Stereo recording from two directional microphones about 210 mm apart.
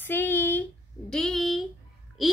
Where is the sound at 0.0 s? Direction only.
10° left (ahead or behind).